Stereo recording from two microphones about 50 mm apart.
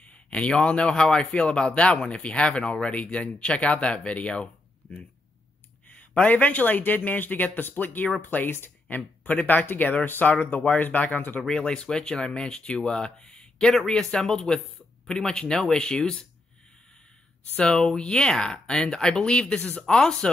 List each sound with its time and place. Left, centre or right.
0.0 s speech: left
5.9 s speech: left
11.5 s speech: centre
17.6 s speech: centre